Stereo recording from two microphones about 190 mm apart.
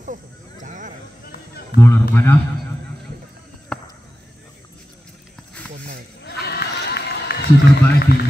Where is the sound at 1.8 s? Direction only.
10° left (ahead or behind).